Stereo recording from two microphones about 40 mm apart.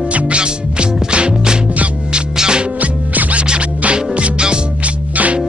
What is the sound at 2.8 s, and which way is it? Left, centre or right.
Music, right.